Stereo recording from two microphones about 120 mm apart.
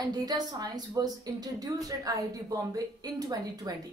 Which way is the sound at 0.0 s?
35° right (ahead or behind).